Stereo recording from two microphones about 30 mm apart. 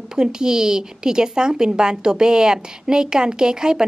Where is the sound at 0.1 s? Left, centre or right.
Right.